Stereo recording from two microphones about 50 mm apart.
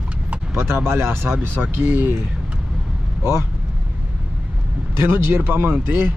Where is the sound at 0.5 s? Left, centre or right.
Right.